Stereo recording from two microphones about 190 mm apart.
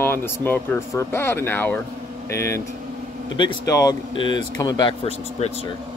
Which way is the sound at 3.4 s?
20° left (ahead or behind).